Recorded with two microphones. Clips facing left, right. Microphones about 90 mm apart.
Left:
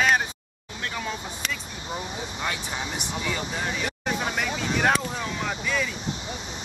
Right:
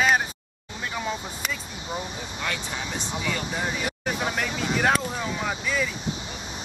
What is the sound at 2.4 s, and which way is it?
Speech, 15° left (ahead or behind).